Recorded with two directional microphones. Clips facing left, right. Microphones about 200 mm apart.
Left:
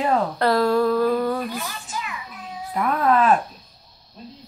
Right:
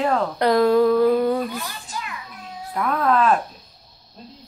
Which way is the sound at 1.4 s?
5° left (ahead or behind).